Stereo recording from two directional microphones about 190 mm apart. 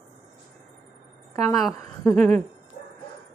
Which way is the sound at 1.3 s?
15° left (ahead or behind).